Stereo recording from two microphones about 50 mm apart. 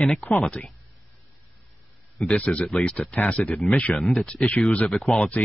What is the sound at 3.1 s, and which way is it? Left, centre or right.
Speech, left.